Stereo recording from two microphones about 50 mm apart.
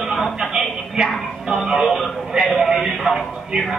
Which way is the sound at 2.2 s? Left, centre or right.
Centre.